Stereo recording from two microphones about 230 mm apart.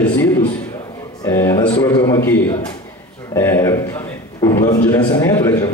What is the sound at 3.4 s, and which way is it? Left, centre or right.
A man's voice, centre.